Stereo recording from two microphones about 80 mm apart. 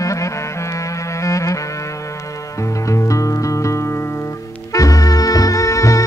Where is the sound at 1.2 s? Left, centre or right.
Left.